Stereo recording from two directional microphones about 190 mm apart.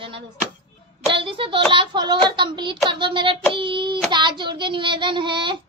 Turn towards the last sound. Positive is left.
turn(degrees=-25)  # may be behind; listen again after turning